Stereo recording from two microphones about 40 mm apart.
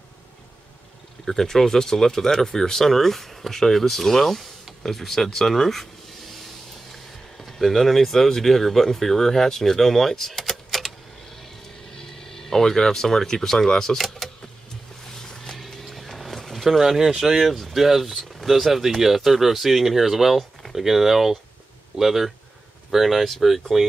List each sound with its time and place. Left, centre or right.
1.2 s speech: centre
11.9 s speech: centre
13.9 s speech: centre
15.0 s music: centre
15.8 s speech: centre